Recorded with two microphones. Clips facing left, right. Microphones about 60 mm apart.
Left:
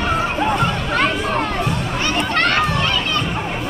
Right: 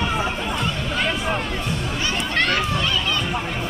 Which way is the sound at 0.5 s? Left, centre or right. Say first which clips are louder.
Left 6 dB; left.